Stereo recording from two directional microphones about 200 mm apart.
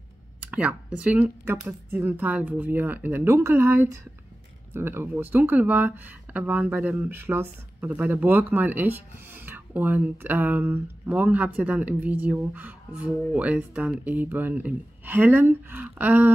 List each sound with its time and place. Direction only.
0.4 s speech: 5° right (ahead or behind)